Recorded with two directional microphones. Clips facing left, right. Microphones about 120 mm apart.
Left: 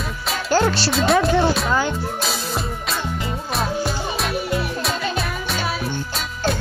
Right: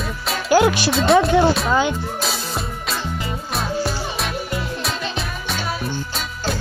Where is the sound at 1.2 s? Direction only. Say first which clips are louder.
Right 2 dB; centre (ahead or behind).